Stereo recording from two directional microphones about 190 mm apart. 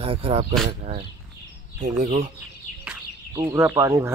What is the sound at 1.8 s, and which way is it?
Speech, 40° right (ahead or behind).